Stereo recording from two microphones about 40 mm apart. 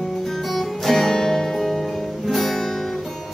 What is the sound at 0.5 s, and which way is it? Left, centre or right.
Music, centre.